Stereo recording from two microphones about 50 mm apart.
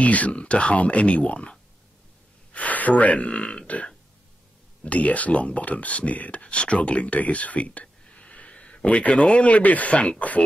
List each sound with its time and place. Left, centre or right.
0.0 s speech: left
2.5 s speech: left
4.8 s speech: left